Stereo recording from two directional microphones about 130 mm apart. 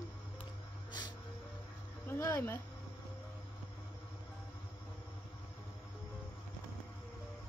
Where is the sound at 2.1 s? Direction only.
20° left (ahead or behind).